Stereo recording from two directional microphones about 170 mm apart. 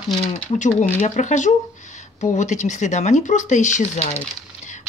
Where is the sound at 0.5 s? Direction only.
45° left (ahead or behind).